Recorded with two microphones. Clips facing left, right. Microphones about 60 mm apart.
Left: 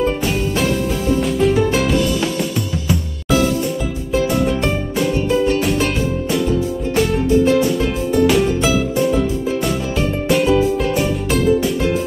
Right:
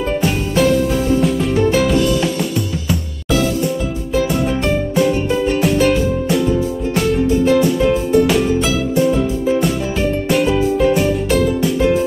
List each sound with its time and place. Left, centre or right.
0.0 s music: centre
4.1 s music: centre
5.6 s music: centre
7.4 s music: centre
10.2 s music: centre